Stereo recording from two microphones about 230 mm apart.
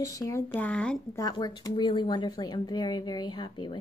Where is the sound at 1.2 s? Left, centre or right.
Centre.